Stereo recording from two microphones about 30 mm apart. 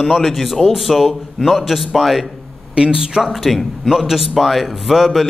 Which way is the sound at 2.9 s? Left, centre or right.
Centre.